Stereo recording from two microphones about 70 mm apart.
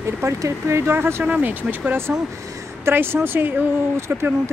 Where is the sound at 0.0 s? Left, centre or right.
Right.